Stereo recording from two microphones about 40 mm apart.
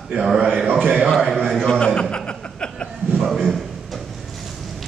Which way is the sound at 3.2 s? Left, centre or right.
Centre.